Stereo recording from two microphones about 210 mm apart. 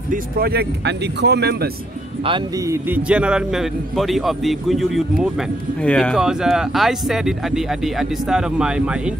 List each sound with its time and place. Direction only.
0.1 s speech: 45° right (ahead or behind)
2.2 s a man's voice: 20° right (ahead or behind)